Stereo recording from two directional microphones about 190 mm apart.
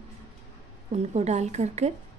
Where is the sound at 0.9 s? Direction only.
35° right (ahead or behind).